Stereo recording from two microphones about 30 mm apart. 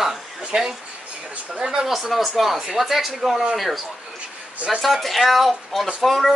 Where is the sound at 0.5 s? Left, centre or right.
Right.